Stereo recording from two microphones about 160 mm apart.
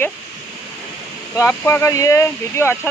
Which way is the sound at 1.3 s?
15° left (ahead or behind).